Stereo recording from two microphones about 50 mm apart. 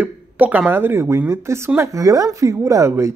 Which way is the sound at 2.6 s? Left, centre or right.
Right.